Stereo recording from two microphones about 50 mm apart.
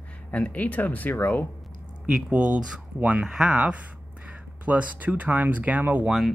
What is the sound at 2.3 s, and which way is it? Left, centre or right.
Speech, right.